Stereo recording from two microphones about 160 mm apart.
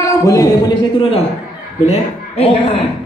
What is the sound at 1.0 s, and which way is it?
A man's voice, 35° left (ahead or behind).